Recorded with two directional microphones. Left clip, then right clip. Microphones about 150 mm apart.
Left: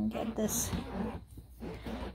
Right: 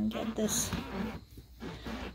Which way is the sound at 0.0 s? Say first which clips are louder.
Right 1 dB; centre (ahead or behind).